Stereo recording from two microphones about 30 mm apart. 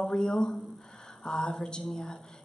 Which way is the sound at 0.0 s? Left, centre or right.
Centre.